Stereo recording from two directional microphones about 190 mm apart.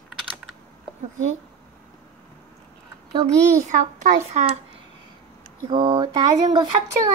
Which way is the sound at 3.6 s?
40° right (ahead or behind).